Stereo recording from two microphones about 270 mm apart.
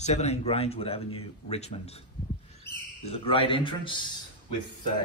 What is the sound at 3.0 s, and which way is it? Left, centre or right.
Speech, left.